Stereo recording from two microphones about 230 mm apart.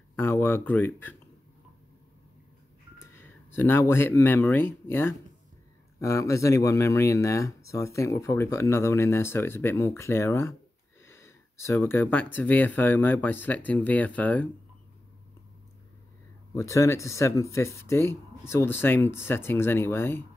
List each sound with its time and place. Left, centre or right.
0.1 s speech: centre
3.0 s speech: centre
16.5 s speech: centre